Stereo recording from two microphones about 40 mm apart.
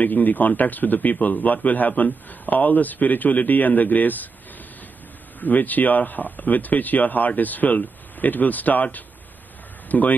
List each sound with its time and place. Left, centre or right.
0.0 s speech: left
5.4 s speech: left